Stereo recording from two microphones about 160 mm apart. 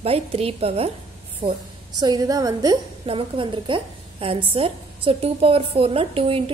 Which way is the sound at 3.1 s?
35° right (ahead or behind).